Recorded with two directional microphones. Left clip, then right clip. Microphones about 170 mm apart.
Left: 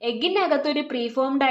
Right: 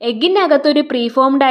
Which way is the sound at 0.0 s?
50° right (ahead or behind).